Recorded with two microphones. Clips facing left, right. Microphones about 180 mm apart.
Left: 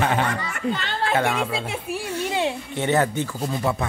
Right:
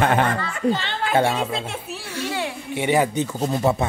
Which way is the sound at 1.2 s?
30° right (ahead or behind).